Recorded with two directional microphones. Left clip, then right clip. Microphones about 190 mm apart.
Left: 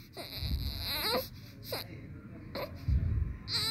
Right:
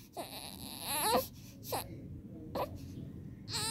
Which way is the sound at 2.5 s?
20° right (ahead or behind).